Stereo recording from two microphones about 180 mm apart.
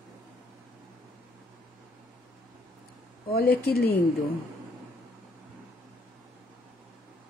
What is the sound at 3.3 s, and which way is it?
Speech, 60° left (ahead or behind).